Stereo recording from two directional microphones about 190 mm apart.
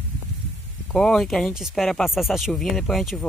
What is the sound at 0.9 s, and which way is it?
Speech, 5° left (ahead or behind).